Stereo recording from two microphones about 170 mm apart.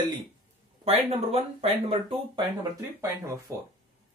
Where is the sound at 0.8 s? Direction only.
40° right (ahead or behind).